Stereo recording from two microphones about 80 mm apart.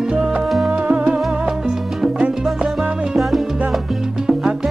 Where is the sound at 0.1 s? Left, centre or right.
Centre.